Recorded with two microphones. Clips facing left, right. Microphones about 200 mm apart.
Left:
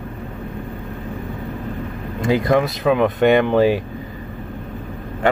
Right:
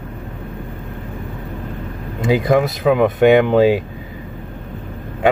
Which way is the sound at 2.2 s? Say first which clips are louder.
Right 2 dB; 5° right (ahead or behind).